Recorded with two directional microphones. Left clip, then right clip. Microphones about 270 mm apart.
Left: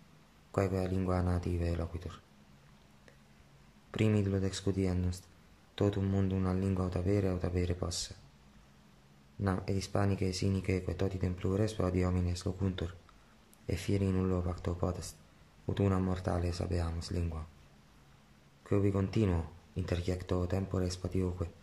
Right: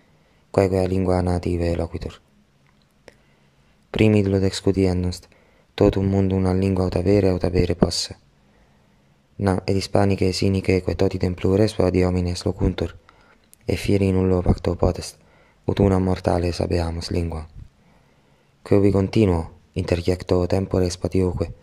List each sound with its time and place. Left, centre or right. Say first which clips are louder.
0.5 s speech: right 14 dB; right
3.9 s speech: right 14 dB; right
9.4 s speech: right 14 dB; right
18.6 s speech: right 15 dB; right